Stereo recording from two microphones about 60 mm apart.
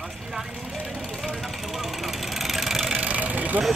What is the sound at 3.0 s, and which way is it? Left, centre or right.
Vehicle, right.